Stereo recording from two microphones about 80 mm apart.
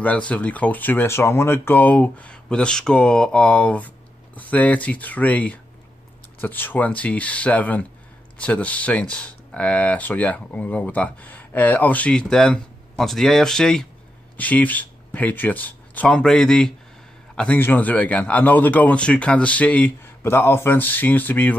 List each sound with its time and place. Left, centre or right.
0.0 s speech: centre
14.3 s speech: centre
17.6 s speech: left